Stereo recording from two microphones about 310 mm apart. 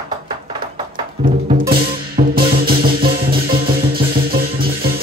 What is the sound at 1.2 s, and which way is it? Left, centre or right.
Music, right.